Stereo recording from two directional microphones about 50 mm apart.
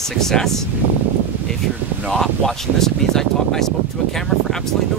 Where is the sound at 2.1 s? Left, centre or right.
Centre.